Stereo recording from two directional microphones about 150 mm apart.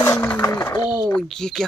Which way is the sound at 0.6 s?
25° left (ahead or behind).